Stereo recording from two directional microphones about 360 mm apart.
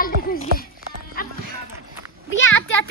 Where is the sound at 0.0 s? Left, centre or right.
Left.